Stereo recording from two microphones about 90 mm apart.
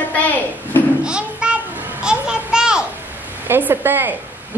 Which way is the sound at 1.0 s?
10° right (ahead or behind).